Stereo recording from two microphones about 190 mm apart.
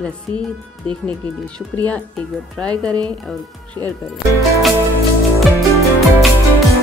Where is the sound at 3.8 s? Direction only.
15° left (ahead or behind).